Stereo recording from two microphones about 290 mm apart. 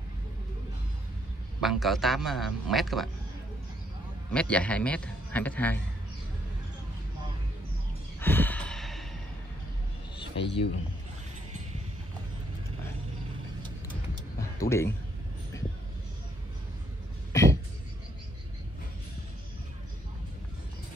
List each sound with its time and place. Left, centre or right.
1.6 s a man's voice: centre
4.3 s a man's voice: centre
8.2 s sigh: centre
10.3 s a man's voice: left
14.6 s speech: centre
17.3 s throat clearing: centre